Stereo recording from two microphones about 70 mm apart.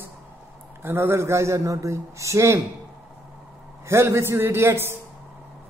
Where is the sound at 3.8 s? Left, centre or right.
Right.